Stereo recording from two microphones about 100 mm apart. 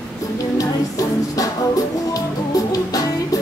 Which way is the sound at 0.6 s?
35° left (ahead or behind).